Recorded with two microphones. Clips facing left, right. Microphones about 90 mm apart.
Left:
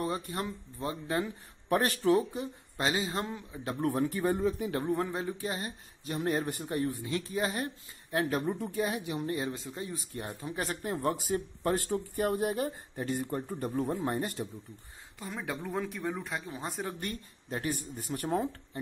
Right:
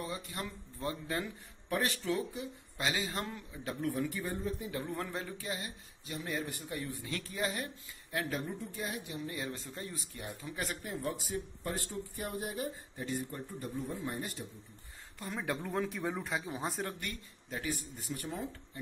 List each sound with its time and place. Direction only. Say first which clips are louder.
0.0 s speech: left 7 dB; 45° left (ahead or behind)
0.4 s speech: left 4 dB; 25° left (ahead or behind)
2.3 s speech: left 5 dB; 40° left (ahead or behind)
3.0 s speech: left 4 dB; 25° left (ahead or behind)
3.6 s speech: left 5 dB; 40° left (ahead or behind)
4.3 s speech: left 8 dB; 85° left
5.0 s speech: left 6 dB; 25° left (ahead or behind)
5.5 s speech: left 3 dB; 50° left (ahead or behind)
7.0 s speech: left 5 dB; 25° left (ahead or behind); by 8.3 s 40° left (ahead or behind)
8.3 s speech: left 7 dB; 55° left (ahead or behind); by 9.2 s 75° left (ahead or behind)
10.1 s speech: left 5 dB; 45° left (ahead or behind)
15.1 s speech: even; centre (ahead or behind)
17.5 s speech: left 4 dB; 50° left (ahead or behind)